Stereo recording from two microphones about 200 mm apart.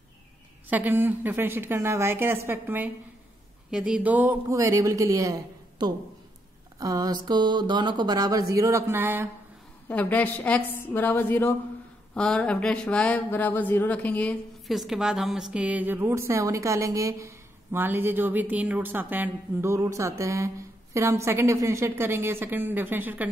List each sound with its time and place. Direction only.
0.7 s speech: 10° right (ahead or behind)
9.8 s a woman's voice: 10° left (ahead or behind); by 23.2 s 10° right (ahead or behind)